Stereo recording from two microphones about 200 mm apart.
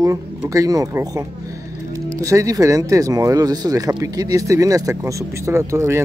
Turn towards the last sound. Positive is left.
turn(degrees=-15)  # may be behind; listen again after turning